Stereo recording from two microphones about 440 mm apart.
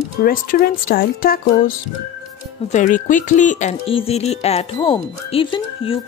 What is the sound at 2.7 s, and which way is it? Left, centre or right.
Speech, centre.